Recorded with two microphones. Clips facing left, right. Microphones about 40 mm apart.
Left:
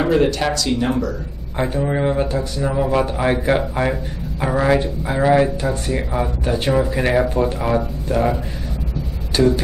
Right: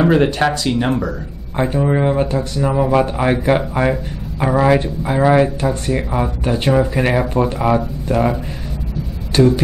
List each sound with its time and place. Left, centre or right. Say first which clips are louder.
0.1 s speech: right 2 dB; right
1.6 s speech: right 3 dB; centre
5.2 s speech: right 2 dB; right
9.4 s speech: right 3 dB; right